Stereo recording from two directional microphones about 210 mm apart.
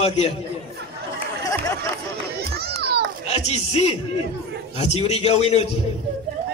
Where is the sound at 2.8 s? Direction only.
50° right (ahead or behind).